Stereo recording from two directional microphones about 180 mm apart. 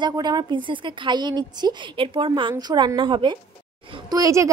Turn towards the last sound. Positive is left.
turn(degrees=-20)  # may be behind; listen again after turning